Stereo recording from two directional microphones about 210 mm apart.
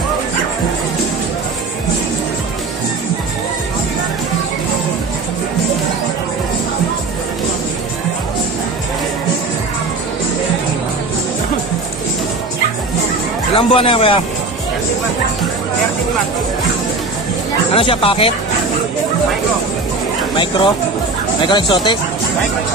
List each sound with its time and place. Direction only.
13.6 s speech: 25° left (ahead or behind)
17.7 s speech: 25° left (ahead or behind)
20.3 s speech: 25° left (ahead or behind)